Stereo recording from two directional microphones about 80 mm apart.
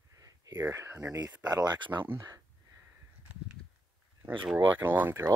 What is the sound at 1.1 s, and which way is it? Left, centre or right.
Speech, right.